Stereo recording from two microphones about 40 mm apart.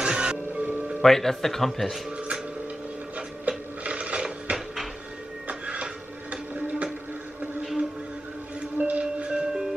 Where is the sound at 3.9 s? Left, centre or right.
Right.